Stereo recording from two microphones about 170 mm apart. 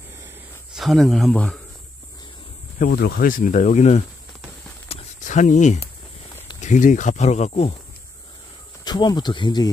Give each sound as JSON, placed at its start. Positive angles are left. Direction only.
{"t": 0.7, "sound": "speech", "side_deg": 0}
{"t": 2.8, "sound": "speech", "side_deg": 65}
{"t": 4.8, "sound": "a sound", "side_deg": 40}
{"t": 6.6, "sound": "speech", "side_deg": 45}
{"t": 8.8, "sound": "speech", "side_deg": 25}